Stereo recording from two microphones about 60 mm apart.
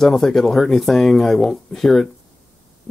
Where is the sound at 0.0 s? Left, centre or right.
Centre.